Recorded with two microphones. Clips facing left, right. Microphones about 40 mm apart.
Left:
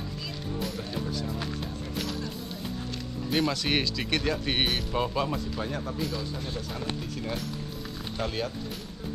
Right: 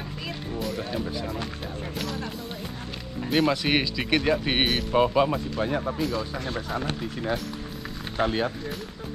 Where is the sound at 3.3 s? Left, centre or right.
Centre.